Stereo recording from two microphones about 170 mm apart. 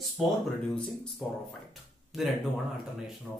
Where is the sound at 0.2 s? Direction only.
5° right (ahead or behind).